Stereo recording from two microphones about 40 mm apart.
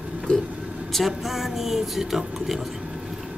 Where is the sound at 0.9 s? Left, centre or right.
Centre.